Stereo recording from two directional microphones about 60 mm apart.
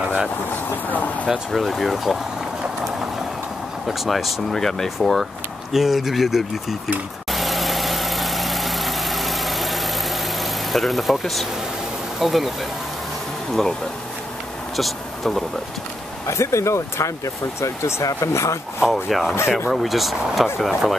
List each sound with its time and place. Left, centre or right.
0.8 s speech: left
1.3 s speech: centre
3.8 s speech: centre
7.2 s vehicle: centre
12.2 s speech: centre
14.8 s speech: centre
16.3 s speech: left
18.8 s speech: centre